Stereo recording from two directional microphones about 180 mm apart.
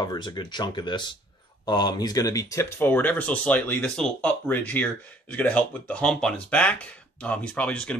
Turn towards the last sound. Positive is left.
turn(degrees=5)  # may be behind; listen again after turning